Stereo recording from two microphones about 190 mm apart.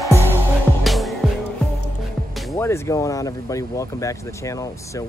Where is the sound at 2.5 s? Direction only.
15° left (ahead or behind).